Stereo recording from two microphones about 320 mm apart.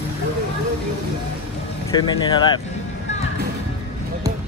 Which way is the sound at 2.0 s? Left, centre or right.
Centre.